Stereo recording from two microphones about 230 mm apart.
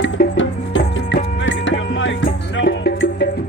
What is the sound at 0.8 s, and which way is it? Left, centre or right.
Music, left.